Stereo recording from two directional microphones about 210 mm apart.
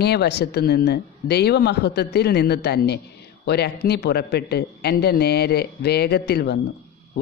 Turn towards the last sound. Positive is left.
turn(degrees=50)  # may be behind; listen again after turning